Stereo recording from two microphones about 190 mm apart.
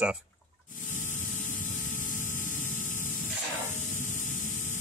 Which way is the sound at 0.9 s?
40° left (ahead or behind).